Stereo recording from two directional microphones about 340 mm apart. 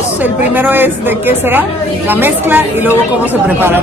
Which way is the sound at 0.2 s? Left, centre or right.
Centre.